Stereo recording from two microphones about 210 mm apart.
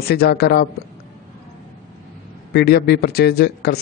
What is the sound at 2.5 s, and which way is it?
A man's voice, 50° left (ahead or behind).